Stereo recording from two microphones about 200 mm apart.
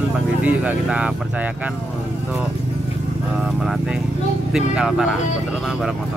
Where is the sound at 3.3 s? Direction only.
Centre (ahead or behind).